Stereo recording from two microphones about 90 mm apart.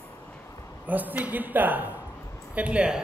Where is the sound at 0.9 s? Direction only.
20° right (ahead or behind).